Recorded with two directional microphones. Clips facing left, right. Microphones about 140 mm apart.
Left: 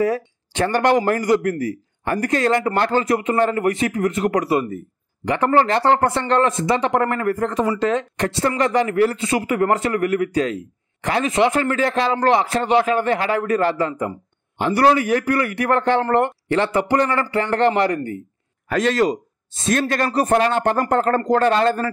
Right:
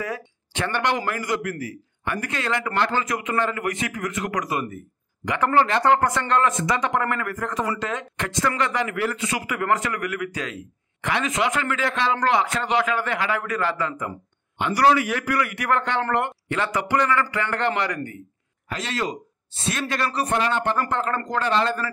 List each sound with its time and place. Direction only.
0.0 s a man's voice: 35° left (ahead or behind)